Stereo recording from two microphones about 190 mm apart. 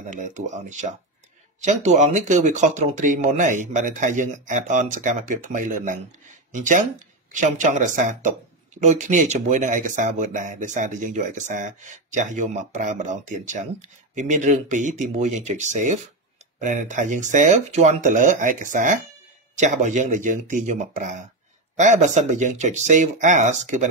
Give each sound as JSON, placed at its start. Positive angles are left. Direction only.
{"t": 0.0, "sound": "speech", "side_deg": -40}